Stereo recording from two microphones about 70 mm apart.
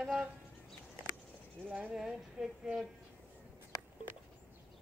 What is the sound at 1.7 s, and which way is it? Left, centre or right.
Female singing, centre.